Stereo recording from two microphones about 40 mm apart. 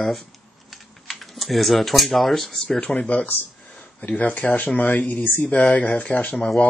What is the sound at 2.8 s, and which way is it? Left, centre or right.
Speech, left.